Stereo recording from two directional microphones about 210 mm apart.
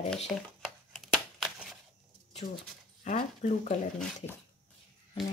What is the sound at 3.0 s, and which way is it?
Speech, 35° left (ahead or behind).